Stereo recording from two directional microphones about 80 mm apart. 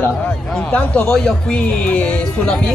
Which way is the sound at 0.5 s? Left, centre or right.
Centre.